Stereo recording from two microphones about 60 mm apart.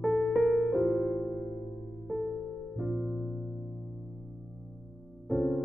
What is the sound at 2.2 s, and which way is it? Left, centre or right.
Music, centre.